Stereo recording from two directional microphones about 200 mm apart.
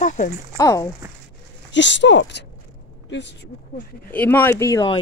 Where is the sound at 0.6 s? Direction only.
15° left (ahead or behind).